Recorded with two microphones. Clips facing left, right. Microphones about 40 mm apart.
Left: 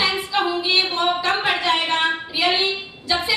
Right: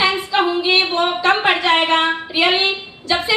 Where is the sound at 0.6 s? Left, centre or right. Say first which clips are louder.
Right 3 dB; right.